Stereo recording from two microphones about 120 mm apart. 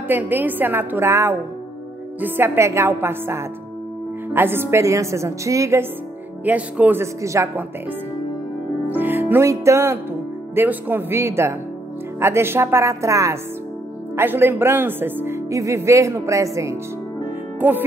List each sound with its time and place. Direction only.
0.1 s a woman's voice: 15° right (ahead or behind)
6.4 s a woman's voice: 15° right (ahead or behind)
8.8 s music: 15° right (ahead or behind)
10.5 s speech: 15° right (ahead or behind)
17.6 s music: 15° right (ahead or behind)